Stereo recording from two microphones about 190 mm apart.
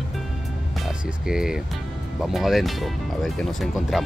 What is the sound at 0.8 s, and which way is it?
Speech, 5° right (ahead or behind).